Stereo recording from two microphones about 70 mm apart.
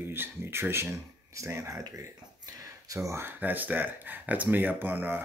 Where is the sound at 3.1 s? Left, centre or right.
Right.